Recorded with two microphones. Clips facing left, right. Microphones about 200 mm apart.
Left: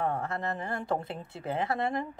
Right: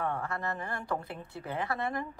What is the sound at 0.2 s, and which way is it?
A woman's voice, 25° left (ahead or behind).